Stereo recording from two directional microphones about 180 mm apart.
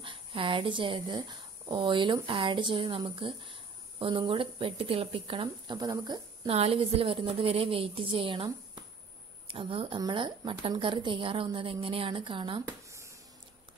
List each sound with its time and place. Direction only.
0.0 s speech: 30° right (ahead or behind)